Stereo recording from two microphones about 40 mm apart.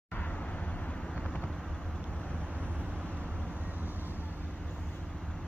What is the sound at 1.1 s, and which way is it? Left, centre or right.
Vehicle, left.